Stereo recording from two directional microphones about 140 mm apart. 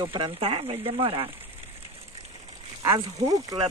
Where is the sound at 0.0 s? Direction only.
35° right (ahead or behind).